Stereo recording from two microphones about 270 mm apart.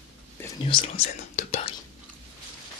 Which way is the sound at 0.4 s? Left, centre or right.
Centre.